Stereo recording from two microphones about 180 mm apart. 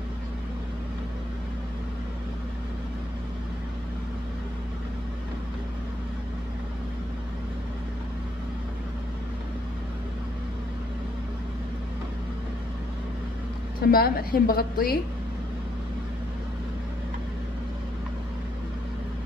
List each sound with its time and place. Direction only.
13.8 s a woman's voice: 55° left (ahead or behind)